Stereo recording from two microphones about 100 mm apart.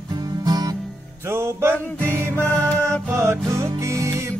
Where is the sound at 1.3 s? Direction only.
25° right (ahead or behind).